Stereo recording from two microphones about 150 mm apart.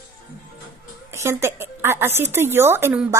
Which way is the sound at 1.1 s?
15° right (ahead or behind).